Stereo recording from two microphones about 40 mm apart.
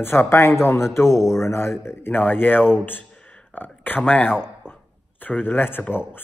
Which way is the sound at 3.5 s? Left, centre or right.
Left.